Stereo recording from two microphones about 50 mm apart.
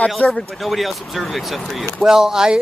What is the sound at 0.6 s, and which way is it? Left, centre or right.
Speech, centre.